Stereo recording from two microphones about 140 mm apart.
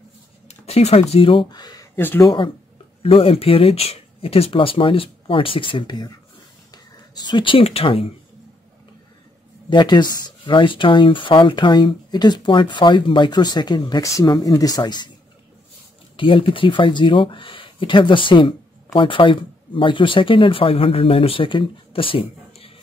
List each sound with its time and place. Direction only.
0.5 s a sound: 50° left (ahead or behind)
1.1 s speech: 40° left (ahead or behind)
2.0 s speech: 15° left (ahead or behind)
2.2 s speech: 35° left (ahead or behind)
9.7 s speech: 30° left (ahead or behind)
16.2 s speech: 40° left (ahead or behind)